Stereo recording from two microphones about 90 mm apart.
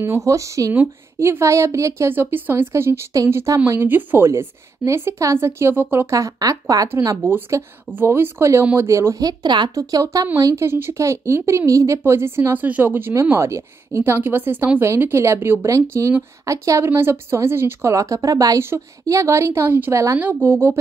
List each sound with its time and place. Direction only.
0.0 s a woman's voice: 30° right (ahead or behind)
6.1 s a woman's voice: 35° right (ahead or behind)
6.9 s a woman's voice: 30° right (ahead or behind); by 9.7 s 55° right (ahead or behind)
9.8 s a woman's voice: 40° right (ahead or behind)
10.4 s a woman's voice: 30° right (ahead or behind)
20.4 s a woman's voice: 25° right (ahead or behind)